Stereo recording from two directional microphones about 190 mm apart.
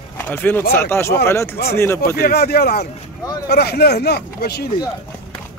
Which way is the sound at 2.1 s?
55° left (ahead or behind).